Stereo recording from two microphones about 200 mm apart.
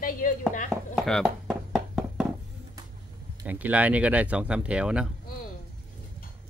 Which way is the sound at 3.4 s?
10° right (ahead or behind).